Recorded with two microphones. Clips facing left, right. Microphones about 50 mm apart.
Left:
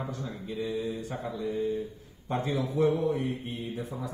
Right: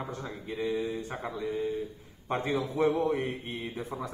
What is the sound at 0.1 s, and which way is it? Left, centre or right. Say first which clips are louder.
A man's voice: left 1 dB; right.